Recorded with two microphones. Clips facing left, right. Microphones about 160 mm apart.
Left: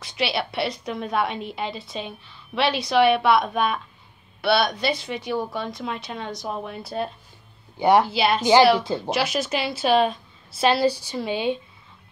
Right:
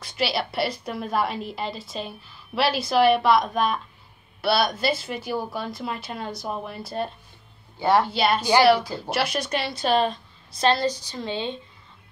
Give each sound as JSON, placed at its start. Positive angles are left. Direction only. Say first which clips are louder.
{"t": 0.0, "sound": "a woman's voice", "louder": "even", "side_deg": 0}
{"t": 7.8, "sound": "speech", "louder": "left 3 dB", "side_deg": 15}
{"t": 8.1, "sound": "a woman's voice", "louder": "left 1 dB", "side_deg": 5}
{"t": 8.4, "sound": "speech", "louder": "left 5 dB", "side_deg": 20}
{"t": 9.1, "sound": "a woman's voice", "louder": "even", "side_deg": 0}